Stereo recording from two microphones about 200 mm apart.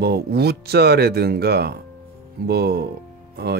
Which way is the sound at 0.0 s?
55° right (ahead or behind).